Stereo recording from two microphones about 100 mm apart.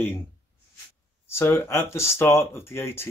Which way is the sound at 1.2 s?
25° left (ahead or behind).